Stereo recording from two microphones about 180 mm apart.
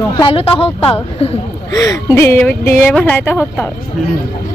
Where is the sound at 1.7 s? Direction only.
20° left (ahead or behind).